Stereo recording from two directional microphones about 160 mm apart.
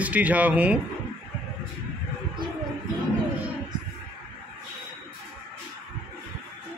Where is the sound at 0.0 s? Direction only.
10° right (ahead or behind).